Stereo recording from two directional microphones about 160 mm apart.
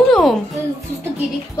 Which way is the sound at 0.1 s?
Centre (ahead or behind).